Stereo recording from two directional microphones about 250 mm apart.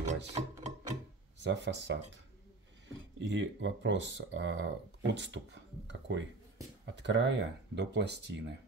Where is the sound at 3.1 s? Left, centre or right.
Right.